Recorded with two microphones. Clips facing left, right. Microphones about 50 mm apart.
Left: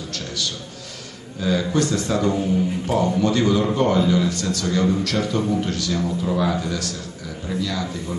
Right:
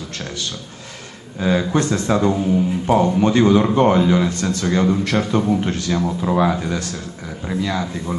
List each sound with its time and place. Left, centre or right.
1.4 s a man's voice: right